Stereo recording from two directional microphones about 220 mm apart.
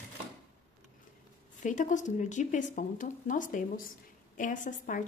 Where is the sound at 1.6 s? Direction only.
35° left (ahead or behind).